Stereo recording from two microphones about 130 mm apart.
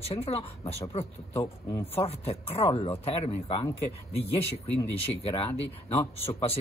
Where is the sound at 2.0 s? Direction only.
50° left (ahead or behind).